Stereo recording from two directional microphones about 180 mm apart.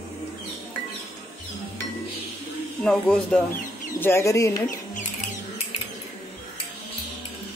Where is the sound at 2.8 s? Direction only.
5° left (ahead or behind).